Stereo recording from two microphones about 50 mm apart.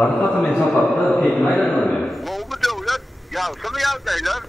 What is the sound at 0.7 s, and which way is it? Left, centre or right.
Speech, centre.